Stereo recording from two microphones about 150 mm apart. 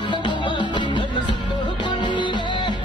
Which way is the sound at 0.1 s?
30° left (ahead or behind).